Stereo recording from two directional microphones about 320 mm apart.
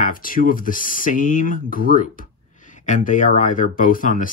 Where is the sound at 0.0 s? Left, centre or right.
Left.